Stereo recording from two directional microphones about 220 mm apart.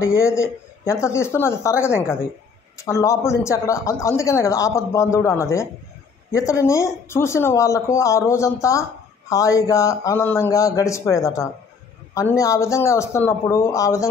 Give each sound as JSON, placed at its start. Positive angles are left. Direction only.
{"t": 0.0, "sound": "speech", "side_deg": 15}